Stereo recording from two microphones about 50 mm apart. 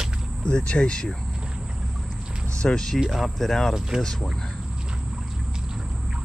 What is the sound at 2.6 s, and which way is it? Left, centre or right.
Speech, centre.